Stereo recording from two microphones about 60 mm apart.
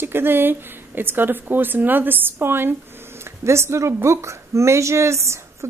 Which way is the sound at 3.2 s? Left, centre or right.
Right.